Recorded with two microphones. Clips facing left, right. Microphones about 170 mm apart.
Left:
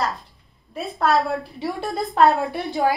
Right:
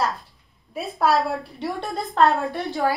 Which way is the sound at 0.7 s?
5° right (ahead or behind).